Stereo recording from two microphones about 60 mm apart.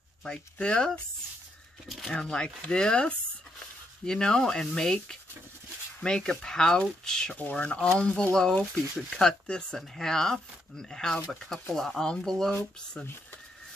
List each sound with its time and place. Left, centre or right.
0.2 s speech: centre
1.9 s speech: centre
2.1 s speech: centre
7.3 s speech: left; by 12.5 s centre